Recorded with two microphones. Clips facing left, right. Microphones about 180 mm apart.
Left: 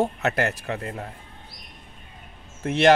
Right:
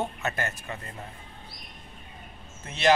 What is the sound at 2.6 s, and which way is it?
Speech, 65° left (ahead or behind).